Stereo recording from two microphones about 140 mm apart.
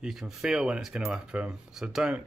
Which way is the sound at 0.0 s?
5° right (ahead or behind).